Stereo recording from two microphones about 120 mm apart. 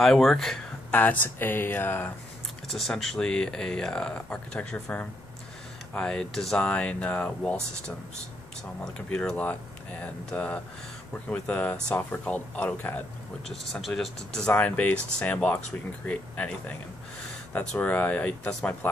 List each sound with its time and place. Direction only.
0.0 s speech: 5° left (ahead or behind)
0.9 s speech: 15° left (ahead or behind)
2.7 s speech: centre (ahead or behind)
8.9 s speech: 5° left (ahead or behind)
13.7 s speech: centre (ahead or behind)